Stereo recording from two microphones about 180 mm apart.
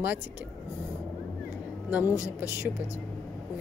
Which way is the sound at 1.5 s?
Centre (ahead or behind).